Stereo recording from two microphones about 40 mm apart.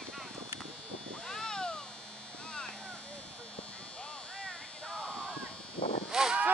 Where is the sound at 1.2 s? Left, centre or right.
Centre.